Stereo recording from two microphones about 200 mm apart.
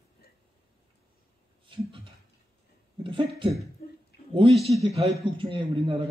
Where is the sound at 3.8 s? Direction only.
45° left (ahead or behind).